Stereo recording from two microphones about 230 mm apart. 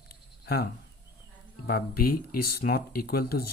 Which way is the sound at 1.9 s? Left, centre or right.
Left.